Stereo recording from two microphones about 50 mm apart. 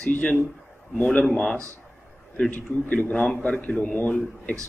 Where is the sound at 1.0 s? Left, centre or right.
Centre.